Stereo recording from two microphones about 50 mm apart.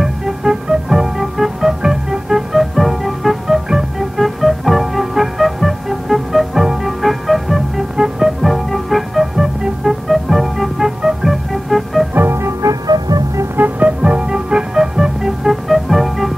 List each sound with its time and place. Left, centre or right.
0.0 s music: centre
12.1 s music: right
12.6 s music: right
13.6 s music: right; by 16.3 s centre